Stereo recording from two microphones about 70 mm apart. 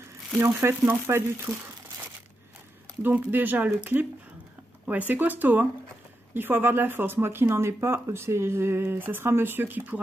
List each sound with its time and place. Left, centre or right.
0.5 s speech: right
3.0 s speech: right